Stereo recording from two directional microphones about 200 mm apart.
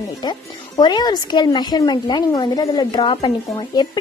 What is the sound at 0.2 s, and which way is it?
A child's voice, 20° left (ahead or behind).